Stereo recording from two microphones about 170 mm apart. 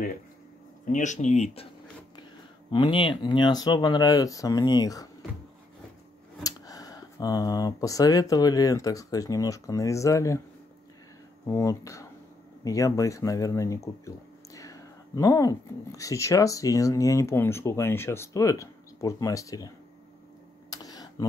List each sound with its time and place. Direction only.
0.8 s speech: 45° left (ahead or behind)
2.7 s speech: 30° left (ahead or behind)
6.4 s speech: 20° left (ahead or behind)
11.4 s speech: 20° left (ahead or behind)
20.7 s a sound: 20° left (ahead or behind)